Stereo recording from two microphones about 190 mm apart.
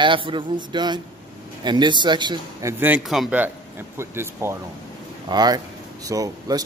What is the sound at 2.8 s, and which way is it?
Speech, 5° right (ahead or behind).